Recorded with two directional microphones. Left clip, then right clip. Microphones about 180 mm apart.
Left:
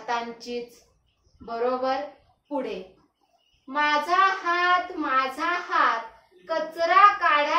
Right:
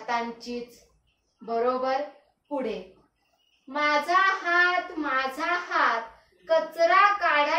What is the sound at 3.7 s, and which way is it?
Speech, 15° left (ahead or behind).